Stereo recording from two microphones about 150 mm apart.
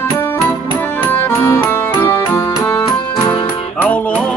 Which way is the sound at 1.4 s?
15° left (ahead or behind).